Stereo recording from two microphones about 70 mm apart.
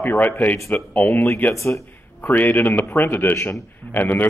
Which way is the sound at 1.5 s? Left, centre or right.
Left.